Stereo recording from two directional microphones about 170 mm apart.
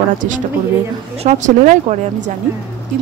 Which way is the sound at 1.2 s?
45° right (ahead or behind).